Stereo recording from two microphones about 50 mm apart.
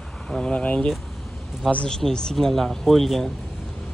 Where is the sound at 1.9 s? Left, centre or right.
Centre.